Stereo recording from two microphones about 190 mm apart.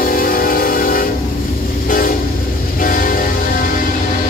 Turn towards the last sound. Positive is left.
turn(degrees=45)  # may be behind; listen again after turning